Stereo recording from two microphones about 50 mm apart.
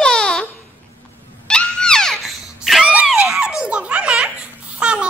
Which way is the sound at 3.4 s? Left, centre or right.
Centre.